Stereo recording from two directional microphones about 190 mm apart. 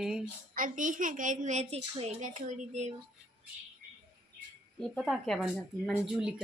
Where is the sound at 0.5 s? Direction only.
45° right (ahead or behind).